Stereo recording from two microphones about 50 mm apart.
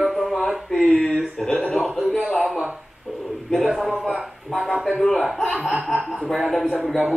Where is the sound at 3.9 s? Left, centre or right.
Centre.